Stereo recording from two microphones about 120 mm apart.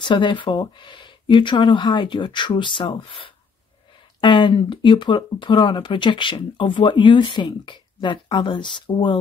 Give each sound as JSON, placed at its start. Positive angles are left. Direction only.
{"t": 0.0, "sound": "speech", "side_deg": 40}